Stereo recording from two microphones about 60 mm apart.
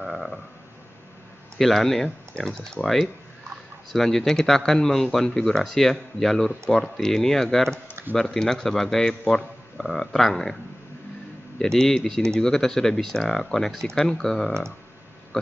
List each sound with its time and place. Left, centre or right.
0.0 s frog: centre
1.6 s speech: centre
11.6 s speech: centre